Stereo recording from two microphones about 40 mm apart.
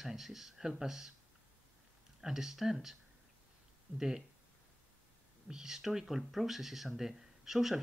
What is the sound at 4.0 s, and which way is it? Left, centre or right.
Speech, centre.